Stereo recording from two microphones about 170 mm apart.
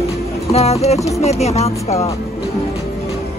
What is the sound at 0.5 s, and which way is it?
Speech, 40° left (ahead or behind).